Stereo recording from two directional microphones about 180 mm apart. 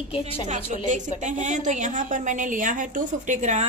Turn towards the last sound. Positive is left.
turn(degrees=-40)  # may be behind; listen again after turning